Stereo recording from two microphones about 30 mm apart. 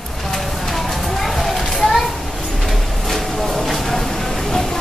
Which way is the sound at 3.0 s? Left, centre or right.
Centre.